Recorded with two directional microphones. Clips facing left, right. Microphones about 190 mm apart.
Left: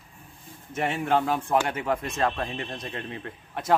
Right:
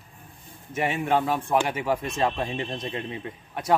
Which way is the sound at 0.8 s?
5° right (ahead or behind).